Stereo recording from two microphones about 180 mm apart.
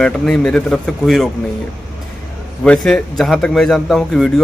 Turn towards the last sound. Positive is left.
turn(degrees=0)  # may be behind; listen again after turning